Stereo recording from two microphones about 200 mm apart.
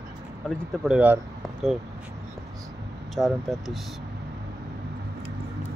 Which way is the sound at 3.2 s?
Centre (ahead or behind).